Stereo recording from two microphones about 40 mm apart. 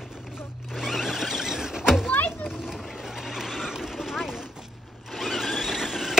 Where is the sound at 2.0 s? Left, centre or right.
Left.